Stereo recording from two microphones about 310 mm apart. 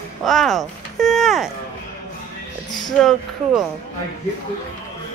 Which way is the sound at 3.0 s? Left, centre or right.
Centre.